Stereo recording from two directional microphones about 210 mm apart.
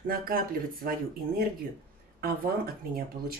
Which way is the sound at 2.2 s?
45° right (ahead or behind).